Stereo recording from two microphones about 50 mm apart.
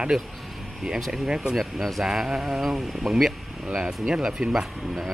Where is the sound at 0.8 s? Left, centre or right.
Centre.